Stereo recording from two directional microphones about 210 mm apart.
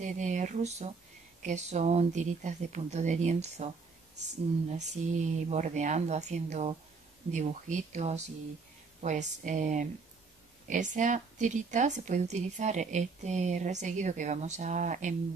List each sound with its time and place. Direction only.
0.0 s speech: 35° right (ahead or behind)
4.7 s speech: 35° right (ahead or behind)